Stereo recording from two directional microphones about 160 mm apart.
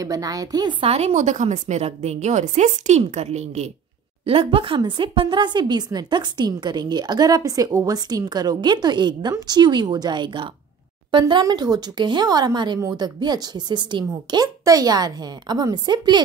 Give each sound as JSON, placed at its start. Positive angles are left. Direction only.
{"t": 0.0, "sound": "a woman's voice", "side_deg": -20}